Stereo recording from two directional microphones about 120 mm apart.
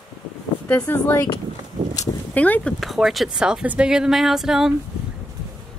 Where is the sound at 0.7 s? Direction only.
15° left (ahead or behind).